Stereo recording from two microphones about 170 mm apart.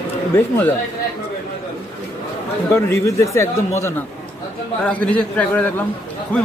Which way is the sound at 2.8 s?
15° left (ahead or behind).